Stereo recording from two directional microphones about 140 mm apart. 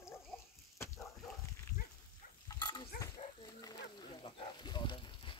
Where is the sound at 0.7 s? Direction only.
20° left (ahead or behind).